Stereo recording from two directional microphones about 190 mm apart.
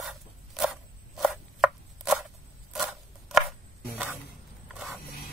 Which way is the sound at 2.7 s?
Centre (ahead or behind).